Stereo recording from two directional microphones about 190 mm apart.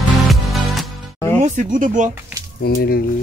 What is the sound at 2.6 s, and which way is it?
Speech, 55° left (ahead or behind).